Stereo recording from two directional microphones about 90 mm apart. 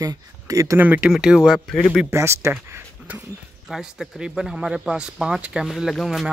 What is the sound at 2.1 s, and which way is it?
Speech, 30° right (ahead or behind).